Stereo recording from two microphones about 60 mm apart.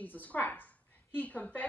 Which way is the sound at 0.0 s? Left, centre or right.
Left.